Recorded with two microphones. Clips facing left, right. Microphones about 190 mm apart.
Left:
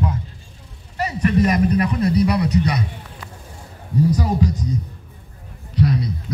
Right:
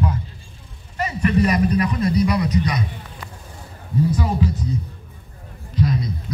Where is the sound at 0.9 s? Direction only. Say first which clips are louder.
Left 1 dB; 40° left (ahead or behind); by 2.8 s 65° left (ahead or behind).